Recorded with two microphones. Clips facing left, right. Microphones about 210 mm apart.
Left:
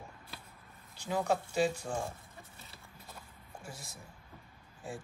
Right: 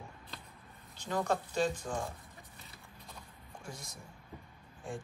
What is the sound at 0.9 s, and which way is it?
Speech, 10° left (ahead or behind).